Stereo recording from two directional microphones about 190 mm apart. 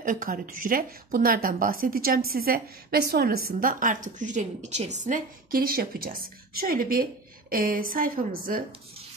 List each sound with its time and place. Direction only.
0.0 s a woman's voice: 45° right (ahead or behind)